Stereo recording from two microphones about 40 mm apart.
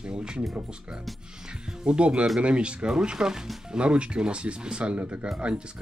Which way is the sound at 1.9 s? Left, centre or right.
Right.